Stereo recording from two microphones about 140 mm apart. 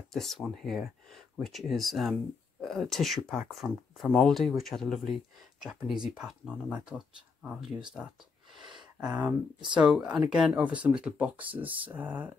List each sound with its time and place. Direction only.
0.1 s speech: centre (ahead or behind)
9.0 s speech: 10° right (ahead or behind)
9.6 s speech: 35° right (ahead or behind)
9.9 s speech: 5° right (ahead or behind)